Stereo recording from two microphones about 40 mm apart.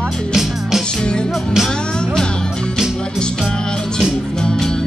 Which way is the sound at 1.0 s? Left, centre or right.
Left.